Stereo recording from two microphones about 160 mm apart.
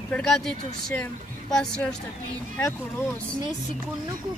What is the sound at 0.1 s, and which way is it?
Speech, centre (ahead or behind).